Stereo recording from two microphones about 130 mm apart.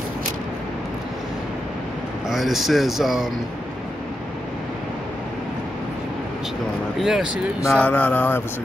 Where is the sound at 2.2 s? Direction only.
Centre (ahead or behind).